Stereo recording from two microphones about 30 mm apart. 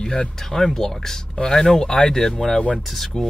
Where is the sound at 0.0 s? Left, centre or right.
Left.